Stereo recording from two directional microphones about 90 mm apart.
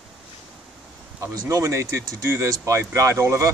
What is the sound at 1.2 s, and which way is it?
Speech, 40° right (ahead or behind).